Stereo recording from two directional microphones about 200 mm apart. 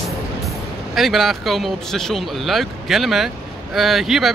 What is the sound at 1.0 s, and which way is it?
Speech, centre (ahead or behind).